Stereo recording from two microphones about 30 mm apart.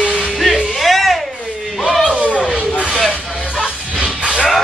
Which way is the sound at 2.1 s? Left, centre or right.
Right.